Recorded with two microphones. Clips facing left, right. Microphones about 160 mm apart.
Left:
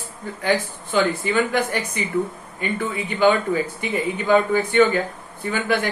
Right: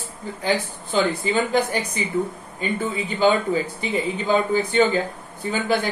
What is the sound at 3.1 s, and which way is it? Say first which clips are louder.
Speech: left 1 dB; 30° right (ahead or behind).